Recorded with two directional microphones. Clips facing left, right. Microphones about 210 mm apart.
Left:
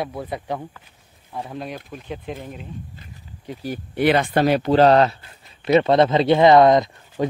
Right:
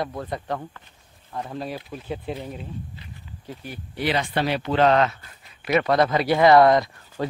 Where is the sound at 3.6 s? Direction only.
55° left (ahead or behind).